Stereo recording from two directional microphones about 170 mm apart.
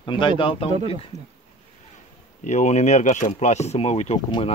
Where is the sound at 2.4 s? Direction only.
45° left (ahead or behind).